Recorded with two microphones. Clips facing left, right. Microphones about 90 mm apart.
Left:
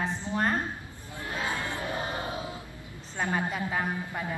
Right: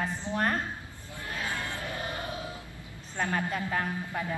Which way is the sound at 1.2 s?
20° left (ahead or behind).